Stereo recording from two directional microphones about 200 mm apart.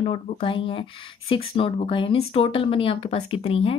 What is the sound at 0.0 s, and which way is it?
A woman's voice, 25° left (ahead or behind).